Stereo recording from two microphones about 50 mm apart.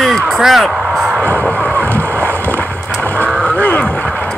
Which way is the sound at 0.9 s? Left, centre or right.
Centre.